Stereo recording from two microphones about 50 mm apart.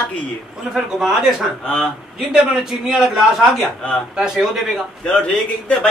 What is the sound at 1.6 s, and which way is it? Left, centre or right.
Speech, centre.